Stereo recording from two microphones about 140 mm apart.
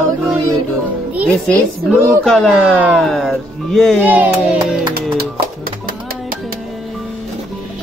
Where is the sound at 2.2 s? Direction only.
5° left (ahead or behind).